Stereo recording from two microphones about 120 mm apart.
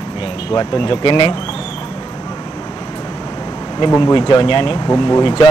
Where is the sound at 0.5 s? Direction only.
45° left (ahead or behind).